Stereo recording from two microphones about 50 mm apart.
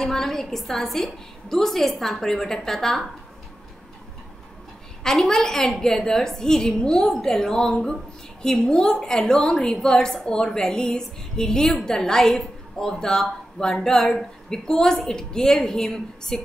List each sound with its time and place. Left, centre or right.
0.0 s a woman's voice: centre
5.0 s a woman's voice: centre